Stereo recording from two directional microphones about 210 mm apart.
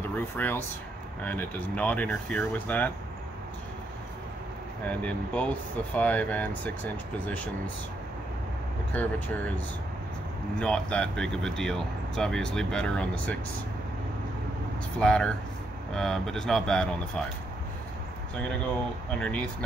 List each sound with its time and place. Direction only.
0.1 s speech: 10° left (ahead or behind)
4.8 s speech: 5° left (ahead or behind)
10.6 s speech: 5° left (ahead or behind)
15.0 s speech: 5° left (ahead or behind)
19.1 s speech: 5° left (ahead or behind)